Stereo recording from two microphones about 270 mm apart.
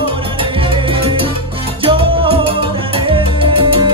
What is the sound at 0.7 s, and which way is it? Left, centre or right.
Music, centre.